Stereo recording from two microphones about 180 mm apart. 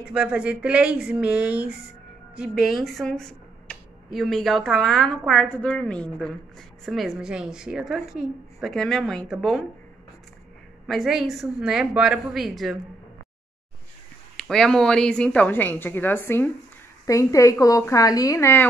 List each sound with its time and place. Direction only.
0.0 s speech: 5° right (ahead or behind)
10.9 s speech: centre (ahead or behind)
14.3 s a woman's voice: 5° left (ahead or behind)